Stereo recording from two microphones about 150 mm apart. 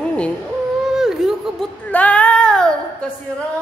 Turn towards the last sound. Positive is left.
turn(degrees=5)  # may be behind; listen again after turning